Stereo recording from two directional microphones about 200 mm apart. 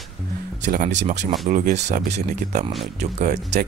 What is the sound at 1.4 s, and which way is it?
Speech, 40° right (ahead or behind).